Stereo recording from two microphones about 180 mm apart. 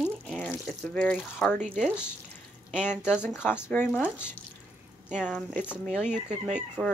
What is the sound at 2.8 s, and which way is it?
Speech, 10° left (ahead or behind).